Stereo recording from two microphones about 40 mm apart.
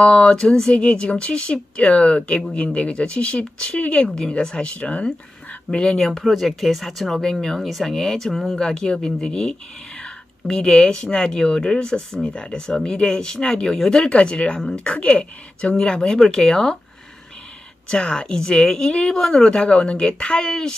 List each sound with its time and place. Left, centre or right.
0.0 s speech: left
5.9 s speech: centre
8.3 s speech: centre
8.5 s speech: centre
12.3 s speech: left
14.6 s speech: centre
14.9 s speech: left
15.7 s speech: centre
17.8 s speech: left
20.4 s speech: centre